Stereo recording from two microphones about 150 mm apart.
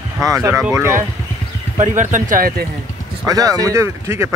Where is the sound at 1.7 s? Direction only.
55° right (ahead or behind).